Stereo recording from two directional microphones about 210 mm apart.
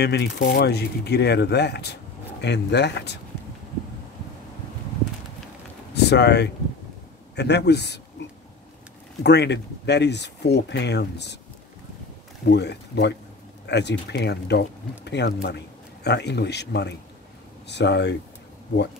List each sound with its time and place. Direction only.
0.0 s speech: 55° left (ahead or behind)
5.9 s speech: 50° left (ahead or behind)
9.2 s speech: 55° left (ahead or behind)
12.4 s speech: 55° left (ahead or behind)